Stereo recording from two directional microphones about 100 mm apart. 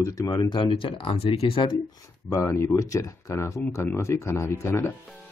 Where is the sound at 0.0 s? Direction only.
35° left (ahead or behind).